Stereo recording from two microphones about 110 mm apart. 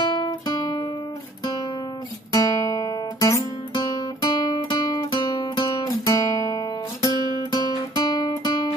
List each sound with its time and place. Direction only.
0.1 s guitar: 40° left (ahead or behind)
2.3 s guitar: 30° left (ahead or behind)
3.9 s music: 35° left (ahead or behind)